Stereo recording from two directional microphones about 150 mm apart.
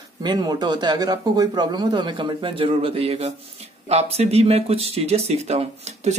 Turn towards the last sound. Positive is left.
turn(degrees=-45)  # may be behind; listen again after turning